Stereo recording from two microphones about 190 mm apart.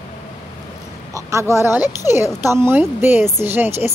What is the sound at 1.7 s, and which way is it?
Speech, 20° left (ahead or behind).